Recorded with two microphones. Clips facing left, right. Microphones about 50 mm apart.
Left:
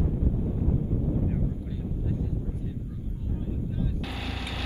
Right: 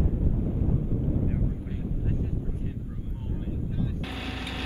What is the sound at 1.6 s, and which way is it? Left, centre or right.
Vehicle, right.